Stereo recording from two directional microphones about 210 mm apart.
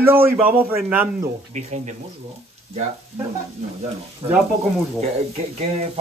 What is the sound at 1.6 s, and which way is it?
Speech, 35° right (ahead or behind).